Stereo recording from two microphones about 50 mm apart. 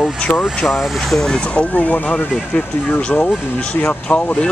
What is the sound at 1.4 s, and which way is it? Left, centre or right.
Speech, left.